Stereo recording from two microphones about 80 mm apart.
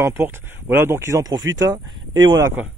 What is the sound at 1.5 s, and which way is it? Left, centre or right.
Speech, right.